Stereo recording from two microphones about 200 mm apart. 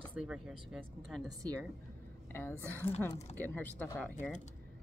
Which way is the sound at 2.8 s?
30° left (ahead or behind).